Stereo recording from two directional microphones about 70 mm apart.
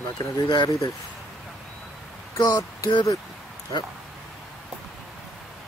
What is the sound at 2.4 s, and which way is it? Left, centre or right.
Speech, left.